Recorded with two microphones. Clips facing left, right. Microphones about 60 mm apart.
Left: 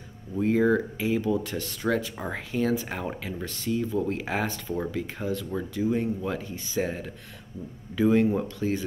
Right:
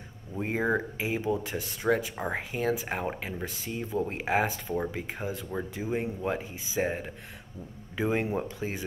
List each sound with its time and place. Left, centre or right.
0.4 s speech: right